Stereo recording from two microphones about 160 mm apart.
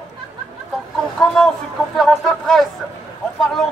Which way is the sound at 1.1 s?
5° left (ahead or behind).